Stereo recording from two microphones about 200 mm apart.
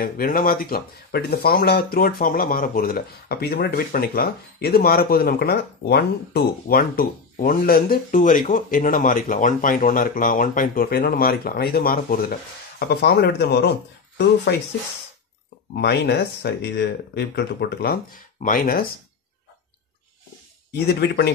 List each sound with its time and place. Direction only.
0.0 s speech: 45° left (ahead or behind)
15.7 s speech: 55° left (ahead or behind)
20.7 s speech: 55° left (ahead or behind)